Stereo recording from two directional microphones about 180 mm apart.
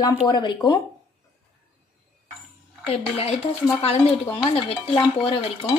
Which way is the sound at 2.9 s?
35° left (ahead or behind).